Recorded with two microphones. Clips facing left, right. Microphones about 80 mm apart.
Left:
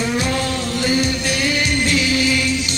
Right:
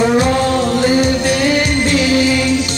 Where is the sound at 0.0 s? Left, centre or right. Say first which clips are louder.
Right 8 dB; right.